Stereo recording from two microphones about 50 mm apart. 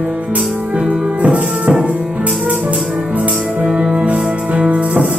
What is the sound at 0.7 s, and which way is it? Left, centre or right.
Music, right.